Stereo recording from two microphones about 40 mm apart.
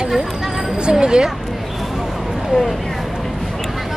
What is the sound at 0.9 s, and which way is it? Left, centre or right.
Speech, centre.